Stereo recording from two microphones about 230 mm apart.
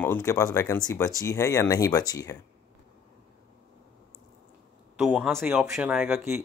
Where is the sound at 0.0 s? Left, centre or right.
Centre.